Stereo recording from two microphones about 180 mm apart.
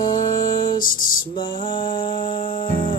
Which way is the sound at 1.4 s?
25° left (ahead or behind).